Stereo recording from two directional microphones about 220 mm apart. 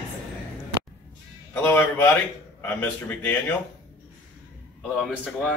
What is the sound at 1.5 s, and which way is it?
A man's voice, 10° left (ahead or behind).